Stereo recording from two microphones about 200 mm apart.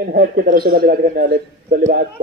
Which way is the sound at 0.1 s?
45° right (ahead or behind).